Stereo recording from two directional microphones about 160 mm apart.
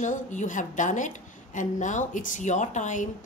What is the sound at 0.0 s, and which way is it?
A woman's voice, 50° left (ahead or behind).